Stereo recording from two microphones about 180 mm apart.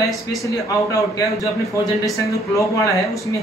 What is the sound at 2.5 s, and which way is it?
Speech, 15° left (ahead or behind).